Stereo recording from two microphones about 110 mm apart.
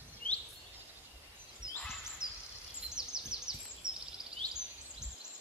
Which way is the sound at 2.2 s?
25° left (ahead or behind).